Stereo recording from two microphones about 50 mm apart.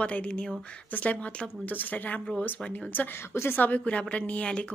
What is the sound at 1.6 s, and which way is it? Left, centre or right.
A woman's voice, left.